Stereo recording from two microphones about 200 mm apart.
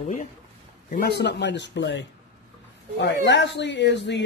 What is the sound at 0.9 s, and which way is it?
Speech, 55° left (ahead or behind).